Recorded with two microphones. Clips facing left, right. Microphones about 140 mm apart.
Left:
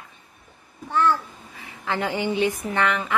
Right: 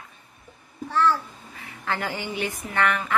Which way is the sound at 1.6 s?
20° left (ahead or behind).